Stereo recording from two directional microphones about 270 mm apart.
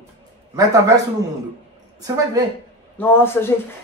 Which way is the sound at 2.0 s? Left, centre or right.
Centre.